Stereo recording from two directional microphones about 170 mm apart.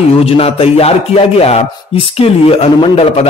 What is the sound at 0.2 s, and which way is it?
Speech, 35° left (ahead or behind).